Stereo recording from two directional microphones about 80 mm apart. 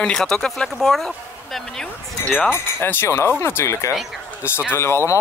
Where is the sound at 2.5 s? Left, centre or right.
Left.